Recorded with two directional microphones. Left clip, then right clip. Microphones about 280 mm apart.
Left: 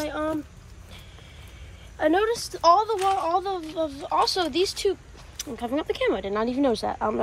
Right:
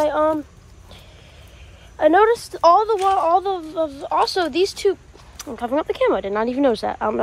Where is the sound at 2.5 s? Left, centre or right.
Right.